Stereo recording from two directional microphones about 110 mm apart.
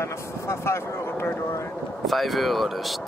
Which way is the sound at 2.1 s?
Centre (ahead or behind).